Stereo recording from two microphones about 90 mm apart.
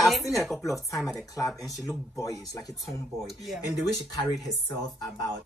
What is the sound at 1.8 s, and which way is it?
Speech, centre (ahead or behind).